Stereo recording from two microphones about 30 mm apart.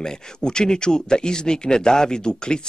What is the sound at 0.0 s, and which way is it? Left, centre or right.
Speech, left.